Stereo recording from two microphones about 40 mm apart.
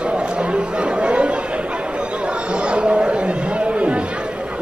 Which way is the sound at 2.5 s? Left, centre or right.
Right.